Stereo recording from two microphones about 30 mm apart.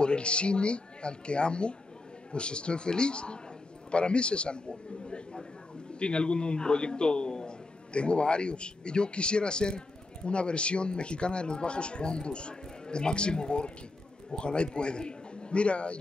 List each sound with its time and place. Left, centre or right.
0.0 s speech: left
5.0 s a sound: left
5.9 s a man's voice: left